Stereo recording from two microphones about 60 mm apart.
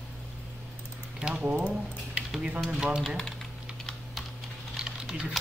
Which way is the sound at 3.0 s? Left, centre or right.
Centre.